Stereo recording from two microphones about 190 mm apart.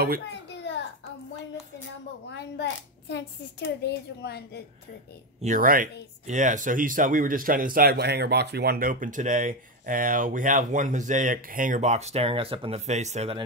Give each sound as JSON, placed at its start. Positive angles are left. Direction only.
{"t": 0.3, "sound": "a sound", "side_deg": 65}
{"t": 2.2, "sound": "a child's voice", "side_deg": 65}
{"t": 5.4, "sound": "speech", "side_deg": -45}